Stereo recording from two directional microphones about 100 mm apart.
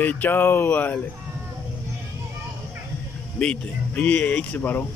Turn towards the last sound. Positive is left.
turn(degrees=15)  # may be behind; listen again after turning